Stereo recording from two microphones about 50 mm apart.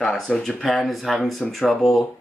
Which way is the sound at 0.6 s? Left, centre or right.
Centre.